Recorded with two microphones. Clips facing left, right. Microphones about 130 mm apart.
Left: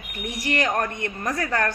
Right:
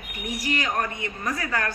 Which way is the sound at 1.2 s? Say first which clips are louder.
Left 3 dB; 50° left (ahead or behind).